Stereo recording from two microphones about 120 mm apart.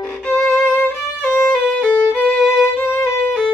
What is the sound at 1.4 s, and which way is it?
Music, 5° left (ahead or behind).